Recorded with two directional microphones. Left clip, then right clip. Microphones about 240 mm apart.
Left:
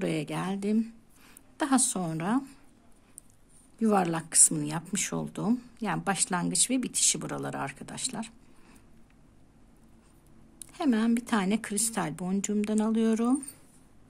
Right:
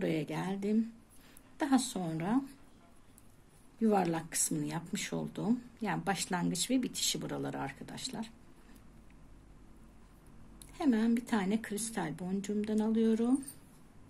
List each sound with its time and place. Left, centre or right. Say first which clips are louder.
0.0 s speech: left 3 dB; left
3.8 s speech: left 4 dB; left
10.7 s speech: left 4 dB; left